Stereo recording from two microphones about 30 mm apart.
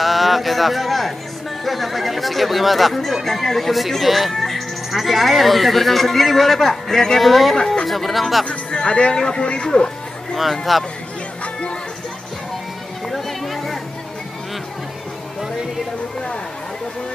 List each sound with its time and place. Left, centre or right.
0.0 s speech: centre
7.2 s speech: centre
8.5 s speech: left
10.5 s speech: centre
13.1 s music: centre